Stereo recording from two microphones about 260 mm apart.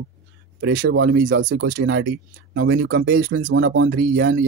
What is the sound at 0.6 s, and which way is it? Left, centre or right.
Speech, right.